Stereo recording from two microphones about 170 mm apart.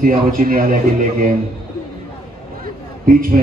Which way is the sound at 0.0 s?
55° right (ahead or behind).